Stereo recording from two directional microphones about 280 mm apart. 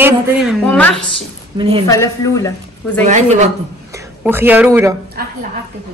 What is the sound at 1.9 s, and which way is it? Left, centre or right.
Speech, centre.